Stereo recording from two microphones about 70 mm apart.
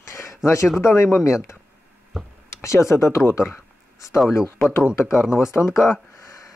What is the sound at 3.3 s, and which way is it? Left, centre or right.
Writing, left.